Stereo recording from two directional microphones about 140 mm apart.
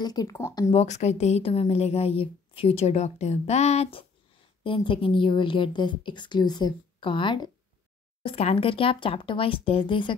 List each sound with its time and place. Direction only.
0.0 s speech: 30° left (ahead or behind)
0.7 s a woman's voice: 50° left (ahead or behind)
4.6 s a woman's voice: 40° left (ahead or behind)